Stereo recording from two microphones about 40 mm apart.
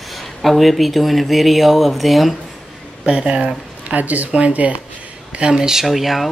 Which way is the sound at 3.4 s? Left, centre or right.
Right.